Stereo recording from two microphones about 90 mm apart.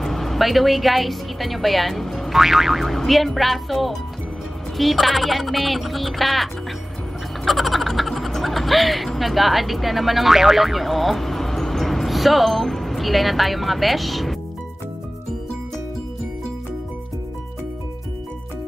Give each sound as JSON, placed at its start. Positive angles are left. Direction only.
{"t": 0.0, "sound": "a woman's voice", "side_deg": 5}